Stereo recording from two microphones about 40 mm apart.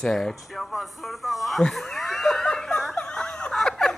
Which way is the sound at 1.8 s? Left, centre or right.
Centre.